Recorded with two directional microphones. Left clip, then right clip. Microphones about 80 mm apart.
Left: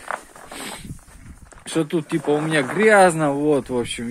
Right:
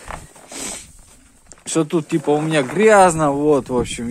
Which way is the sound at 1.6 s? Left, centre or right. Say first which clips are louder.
Right 3 dB; right.